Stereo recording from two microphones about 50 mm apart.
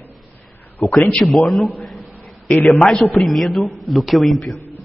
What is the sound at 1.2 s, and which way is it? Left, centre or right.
Speech, centre.